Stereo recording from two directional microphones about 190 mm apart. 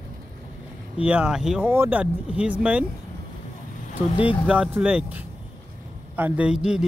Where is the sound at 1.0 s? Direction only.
5° right (ahead or behind).